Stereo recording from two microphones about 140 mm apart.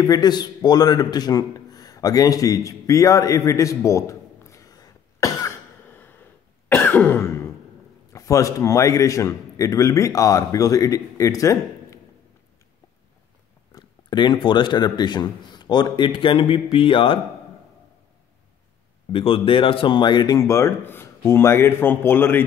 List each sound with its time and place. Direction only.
0.0 s speech: 30° left (ahead or behind)
6.7 s cough: 15° left (ahead or behind)
8.1 s a man's voice: 25° left (ahead or behind)
13.7 s a man's voice: 30° left (ahead or behind)
19.1 s a man's voice: 40° left (ahead or behind); by 22.4 s 15° left (ahead or behind)